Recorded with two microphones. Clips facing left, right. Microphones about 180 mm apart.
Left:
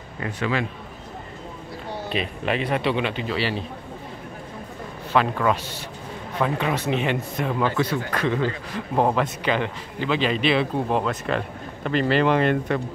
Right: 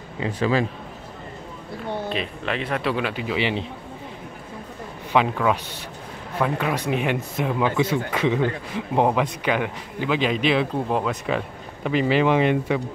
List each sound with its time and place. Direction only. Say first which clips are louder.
0.2 s a man's voice: right 4 dB; 35° right (ahead or behind)
2.1 s speech: left 2 dB; 10° left (ahead or behind)
2.8 s speech: left 1 dB; centre (ahead or behind)
3.3 s a man's voice: right 4 dB; 20° right (ahead or behind)
5.1 s speech: right 1 dB; 10° right (ahead or behind)